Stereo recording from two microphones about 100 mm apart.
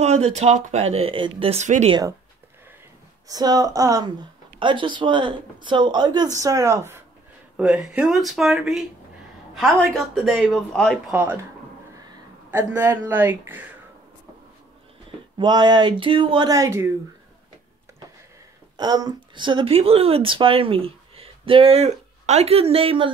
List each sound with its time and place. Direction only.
0.0 s speech: 90° right; by 2.0 s 65° right (ahead or behind)
3.3 s speech: 40° right (ahead or behind)
7.5 s a woman's voice: 10° right (ahead or behind); by 11.0 s 5° left (ahead or behind)
11.1 s speech: 15° right (ahead or behind)
12.5 s speech: 25° right (ahead or behind)
15.3 s speech: 45° right (ahead or behind)
16.4 s speech: 35° right (ahead or behind)
18.8 s speech: 40° right (ahead or behind)
19.7 s speech: 75° right (ahead or behind)